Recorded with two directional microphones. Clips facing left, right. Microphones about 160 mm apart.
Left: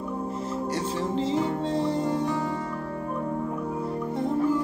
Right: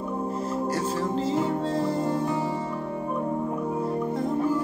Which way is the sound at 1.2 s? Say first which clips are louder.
Even; 25° left (ahead or behind).